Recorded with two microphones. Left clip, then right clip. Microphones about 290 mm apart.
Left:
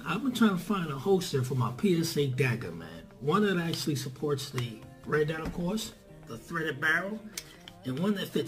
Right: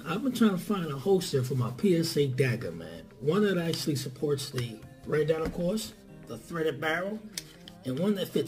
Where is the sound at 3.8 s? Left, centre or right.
Right.